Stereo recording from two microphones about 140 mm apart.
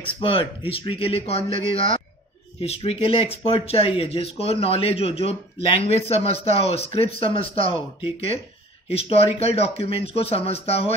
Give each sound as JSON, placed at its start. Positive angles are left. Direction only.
{"t": 0.0, "sound": "speech", "side_deg": 40}